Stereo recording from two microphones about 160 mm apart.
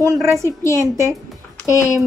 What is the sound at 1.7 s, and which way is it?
Speech, 20° left (ahead or behind).